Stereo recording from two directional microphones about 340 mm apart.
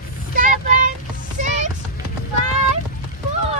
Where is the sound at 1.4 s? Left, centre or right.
Right.